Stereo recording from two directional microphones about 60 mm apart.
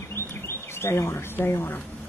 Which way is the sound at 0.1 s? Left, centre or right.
Left.